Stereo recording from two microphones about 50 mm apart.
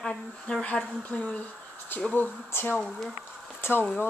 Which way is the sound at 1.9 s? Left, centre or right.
Left.